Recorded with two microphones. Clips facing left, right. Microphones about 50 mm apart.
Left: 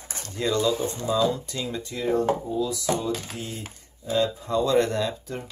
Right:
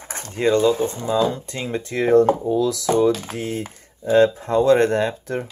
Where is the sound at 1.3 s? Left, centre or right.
Right.